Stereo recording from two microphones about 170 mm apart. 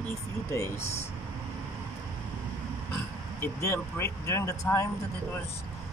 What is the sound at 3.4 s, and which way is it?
Speech, 15° left (ahead or behind).